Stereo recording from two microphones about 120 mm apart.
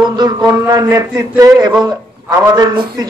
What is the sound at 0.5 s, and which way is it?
A man's voice, 25° right (ahead or behind).